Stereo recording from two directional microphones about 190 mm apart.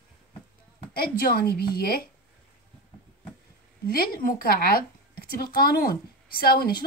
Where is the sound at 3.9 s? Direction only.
50° left (ahead or behind).